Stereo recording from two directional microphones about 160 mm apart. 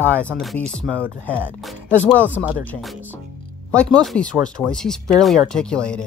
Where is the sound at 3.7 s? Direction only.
5° left (ahead or behind).